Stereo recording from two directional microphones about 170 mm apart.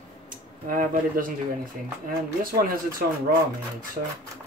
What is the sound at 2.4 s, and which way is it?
Speech, 60° right (ahead or behind).